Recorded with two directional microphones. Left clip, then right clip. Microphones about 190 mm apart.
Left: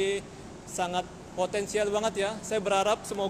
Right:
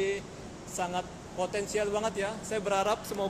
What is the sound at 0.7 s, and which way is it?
Speech, 30° left (ahead or behind).